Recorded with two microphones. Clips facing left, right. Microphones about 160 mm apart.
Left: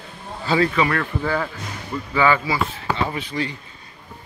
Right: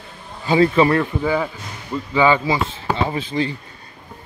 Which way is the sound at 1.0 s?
15° right (ahead or behind).